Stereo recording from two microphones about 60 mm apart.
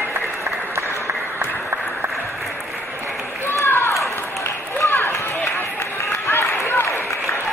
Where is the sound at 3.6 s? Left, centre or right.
Left.